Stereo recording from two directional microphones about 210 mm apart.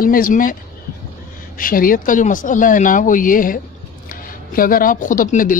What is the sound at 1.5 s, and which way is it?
Speech, 40° left (ahead or behind).